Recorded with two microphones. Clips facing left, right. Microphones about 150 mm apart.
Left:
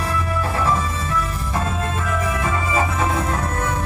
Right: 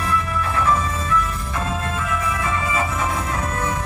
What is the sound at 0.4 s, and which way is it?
Music, 30° left (ahead or behind).